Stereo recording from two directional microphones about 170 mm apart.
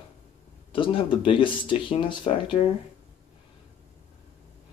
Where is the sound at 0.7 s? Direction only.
30° left (ahead or behind).